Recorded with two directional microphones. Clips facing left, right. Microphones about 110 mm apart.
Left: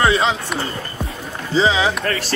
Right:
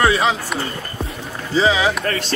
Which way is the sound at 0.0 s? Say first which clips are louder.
Even; 25° left (ahead or behind).